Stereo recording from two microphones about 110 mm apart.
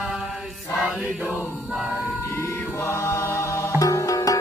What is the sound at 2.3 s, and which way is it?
Music, 25° left (ahead or behind).